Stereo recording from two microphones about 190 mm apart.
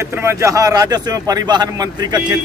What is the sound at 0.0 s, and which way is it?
Speech, 15° right (ahead or behind).